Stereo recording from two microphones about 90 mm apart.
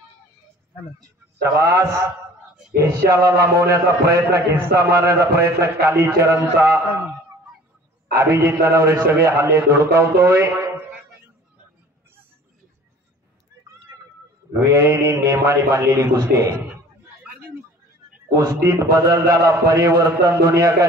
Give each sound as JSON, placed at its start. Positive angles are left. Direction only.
{"t": 1.4, "sound": "a man's voice", "side_deg": -35}
{"t": 8.2, "sound": "a man's voice", "side_deg": -30}
{"t": 14.5, "sound": "a man's voice", "side_deg": -30}
{"t": 17.2, "sound": "a sound", "side_deg": -15}
{"t": 18.3, "sound": "a man's voice", "side_deg": -40}